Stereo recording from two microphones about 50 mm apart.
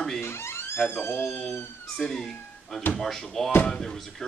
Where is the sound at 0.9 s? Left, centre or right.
Left.